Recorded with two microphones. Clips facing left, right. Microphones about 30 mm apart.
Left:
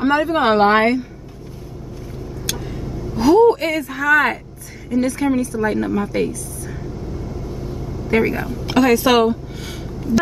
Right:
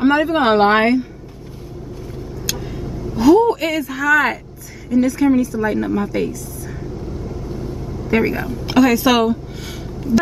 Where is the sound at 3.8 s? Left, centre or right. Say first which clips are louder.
Right 2 dB; right.